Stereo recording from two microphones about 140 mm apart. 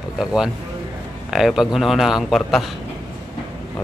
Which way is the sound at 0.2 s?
5° right (ahead or behind).